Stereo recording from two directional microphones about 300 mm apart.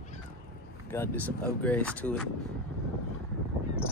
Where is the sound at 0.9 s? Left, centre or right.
Centre.